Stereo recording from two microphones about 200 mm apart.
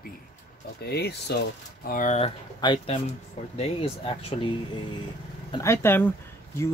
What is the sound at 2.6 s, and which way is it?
Speech, 25° left (ahead or behind).